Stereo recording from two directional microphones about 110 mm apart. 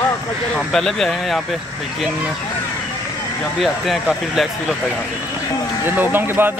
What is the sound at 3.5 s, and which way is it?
Speech, centre (ahead or behind).